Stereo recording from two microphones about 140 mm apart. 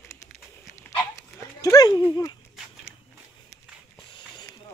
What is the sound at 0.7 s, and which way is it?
Dog, 20° left (ahead or behind).